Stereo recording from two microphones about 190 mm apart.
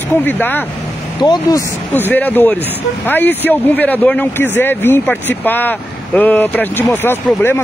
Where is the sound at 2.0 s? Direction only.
10° left (ahead or behind).